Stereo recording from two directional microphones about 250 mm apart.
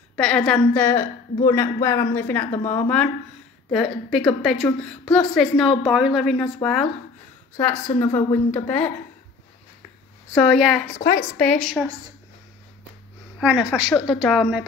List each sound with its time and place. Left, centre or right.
0.1 s a woman's voice: centre
4.1 s a woman's voice: centre
10.3 s a woman's voice: centre
11.0 s a woman's voice: left
11.3 s a woman's voice: centre
13.4 s a woman's voice: centre